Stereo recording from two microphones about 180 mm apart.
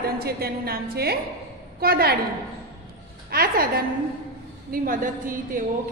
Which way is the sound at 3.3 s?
60° right (ahead or behind).